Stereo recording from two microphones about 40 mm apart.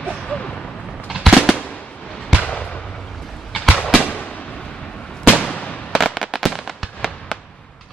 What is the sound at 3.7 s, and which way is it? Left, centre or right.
Fireworks, centre.